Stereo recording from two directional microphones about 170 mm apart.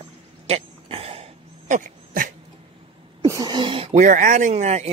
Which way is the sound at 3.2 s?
25° right (ahead or behind).